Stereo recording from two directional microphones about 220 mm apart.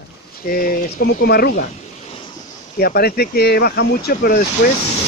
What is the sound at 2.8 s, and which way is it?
Speech, 45° left (ahead or behind).